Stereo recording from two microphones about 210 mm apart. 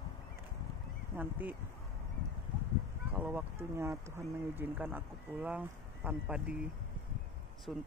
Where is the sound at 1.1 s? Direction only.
10° right (ahead or behind).